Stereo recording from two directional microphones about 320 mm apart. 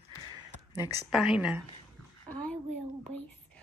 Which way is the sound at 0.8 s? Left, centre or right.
Centre.